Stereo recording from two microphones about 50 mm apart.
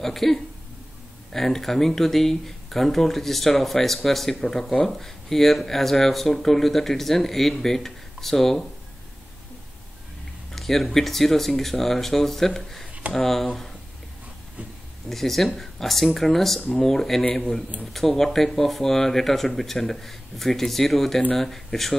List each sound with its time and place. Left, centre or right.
0.0 s speech: centre
10.5 s speech: centre
15.0 s a man's voice: centre
17.9 s speech: centre